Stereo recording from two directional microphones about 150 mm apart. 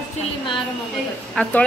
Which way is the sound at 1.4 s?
10° left (ahead or behind).